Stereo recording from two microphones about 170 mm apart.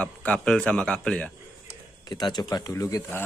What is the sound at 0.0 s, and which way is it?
A man's voice, 5° left (ahead or behind).